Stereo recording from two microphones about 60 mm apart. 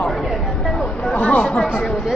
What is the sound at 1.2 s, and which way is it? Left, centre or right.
Speech, left.